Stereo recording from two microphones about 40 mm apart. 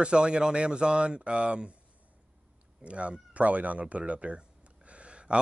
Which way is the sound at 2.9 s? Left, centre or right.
Right.